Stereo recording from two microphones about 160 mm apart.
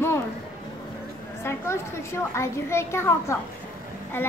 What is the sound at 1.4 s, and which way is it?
A woman's voice, 15° left (ahead or behind).